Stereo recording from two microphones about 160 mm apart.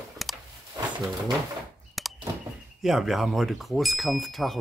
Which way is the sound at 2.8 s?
Centre (ahead or behind).